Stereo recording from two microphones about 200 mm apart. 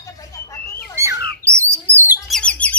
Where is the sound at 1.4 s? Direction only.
15° right (ahead or behind).